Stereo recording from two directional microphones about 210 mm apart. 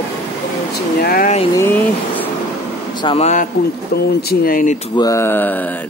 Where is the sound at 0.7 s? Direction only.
45° left (ahead or behind).